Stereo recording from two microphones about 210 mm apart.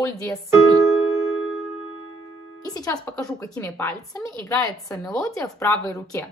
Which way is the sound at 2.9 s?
5° left (ahead or behind).